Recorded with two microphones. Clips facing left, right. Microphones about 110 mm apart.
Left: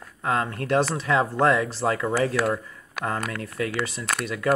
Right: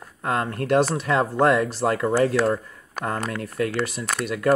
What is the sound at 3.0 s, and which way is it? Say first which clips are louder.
Speech: right 1 dB; 45° right (ahead or behind).